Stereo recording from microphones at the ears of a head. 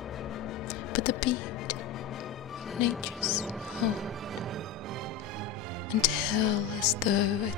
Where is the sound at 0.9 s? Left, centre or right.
Left.